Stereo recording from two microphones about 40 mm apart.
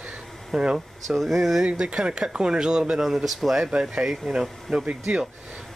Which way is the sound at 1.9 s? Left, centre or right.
Right.